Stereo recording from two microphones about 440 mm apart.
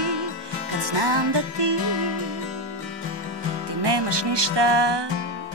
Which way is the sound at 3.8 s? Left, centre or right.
Right.